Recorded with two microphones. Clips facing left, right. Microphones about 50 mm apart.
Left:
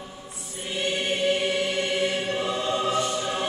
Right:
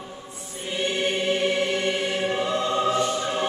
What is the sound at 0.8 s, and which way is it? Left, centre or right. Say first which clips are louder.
Choir: right 2 dB; right.